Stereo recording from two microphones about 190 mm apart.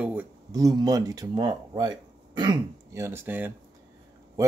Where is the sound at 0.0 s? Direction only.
10° right (ahead or behind).